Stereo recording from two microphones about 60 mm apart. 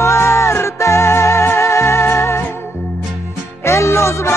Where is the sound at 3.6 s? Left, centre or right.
Left.